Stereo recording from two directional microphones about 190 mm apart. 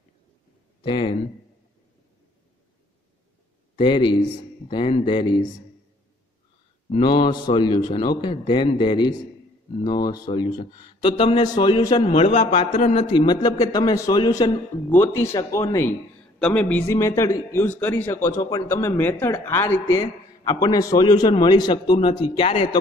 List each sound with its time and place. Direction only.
0.8 s a man's voice: 25° left (ahead or behind)
3.7 s a man's voice: 25° left (ahead or behind)
6.9 s a man's voice: 25° left (ahead or behind)
14.9 s a man's voice: 10° left (ahead or behind); by 22.8 s 30° left (ahead or behind)